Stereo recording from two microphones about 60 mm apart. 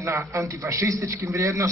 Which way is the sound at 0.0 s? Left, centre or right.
Right.